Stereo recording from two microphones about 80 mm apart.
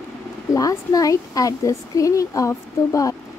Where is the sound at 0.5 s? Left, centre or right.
Left.